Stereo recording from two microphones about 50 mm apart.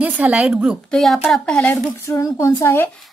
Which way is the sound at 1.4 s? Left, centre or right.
Centre.